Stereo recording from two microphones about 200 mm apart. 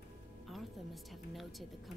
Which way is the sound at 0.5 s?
Centre (ahead or behind).